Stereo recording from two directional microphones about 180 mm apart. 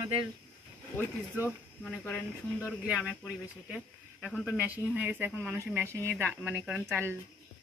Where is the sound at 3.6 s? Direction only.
5° right (ahead or behind).